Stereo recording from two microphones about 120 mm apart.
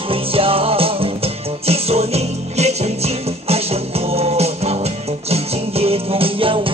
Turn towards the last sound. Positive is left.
turn(degrees=-50)  # may be behind; listen again after turning